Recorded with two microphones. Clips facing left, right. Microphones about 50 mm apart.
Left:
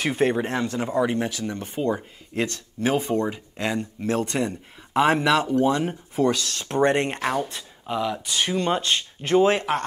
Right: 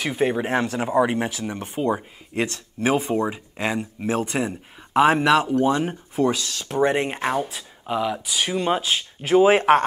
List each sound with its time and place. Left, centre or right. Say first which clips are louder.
0.0 s speech: even; centre
0.7 s speech: right 1 dB; centre
7.2 s speech: right 1 dB; centre